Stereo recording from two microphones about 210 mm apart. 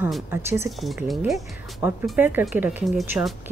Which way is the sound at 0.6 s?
Centre (ahead or behind).